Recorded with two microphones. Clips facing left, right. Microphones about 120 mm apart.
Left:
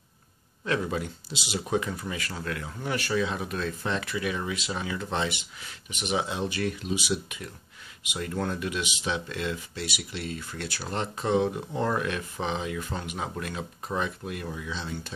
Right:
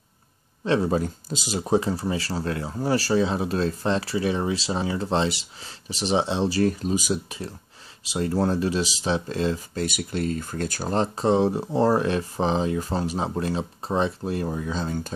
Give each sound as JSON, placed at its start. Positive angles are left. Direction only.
{"t": 0.7, "sound": "speech", "side_deg": -35}
{"t": 9.8, "sound": "speech", "side_deg": -45}